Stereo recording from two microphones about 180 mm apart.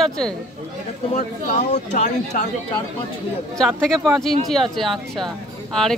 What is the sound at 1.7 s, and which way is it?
Speech, 40° left (ahead or behind).